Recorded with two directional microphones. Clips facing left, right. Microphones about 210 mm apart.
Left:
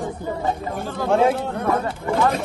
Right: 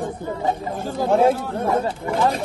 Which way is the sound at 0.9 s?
15° right (ahead or behind).